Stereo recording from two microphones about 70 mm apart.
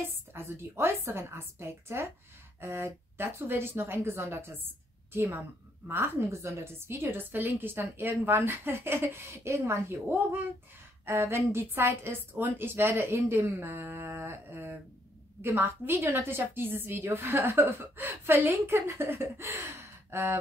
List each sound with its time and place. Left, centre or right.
0.3 s a woman's voice: right